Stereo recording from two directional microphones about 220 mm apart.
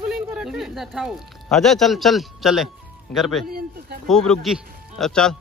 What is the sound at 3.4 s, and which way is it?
Speech, 45° right (ahead or behind).